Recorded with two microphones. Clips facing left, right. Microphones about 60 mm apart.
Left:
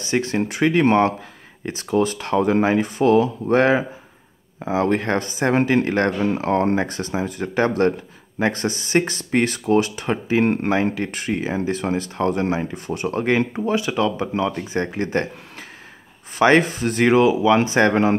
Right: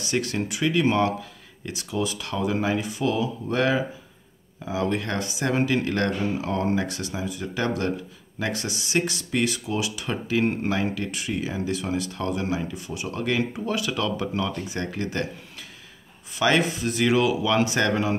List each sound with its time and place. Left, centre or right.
0.0 s speech: left
6.2 s speech: left
10.4 s speech: left
10.7 s speech: left
16.3 s speech: left